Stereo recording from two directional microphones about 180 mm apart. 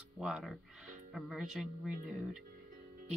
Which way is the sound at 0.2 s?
Centre (ahead or behind).